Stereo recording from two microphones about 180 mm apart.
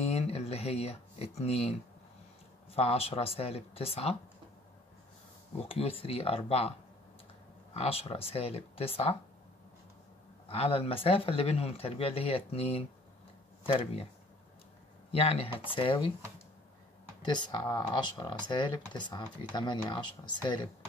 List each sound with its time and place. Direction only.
0.1 s speech: 35° left (ahead or behind)
5.7 s speech: 30° left (ahead or behind)
7.7 s speech: 35° left (ahead or behind)
10.5 s speech: 30° left (ahead or behind)
15.0 s speech: 35° left (ahead or behind)
17.2 s speech: 25° left (ahead or behind)